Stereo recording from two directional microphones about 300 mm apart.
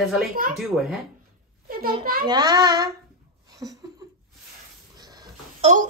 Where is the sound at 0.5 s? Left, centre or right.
Centre.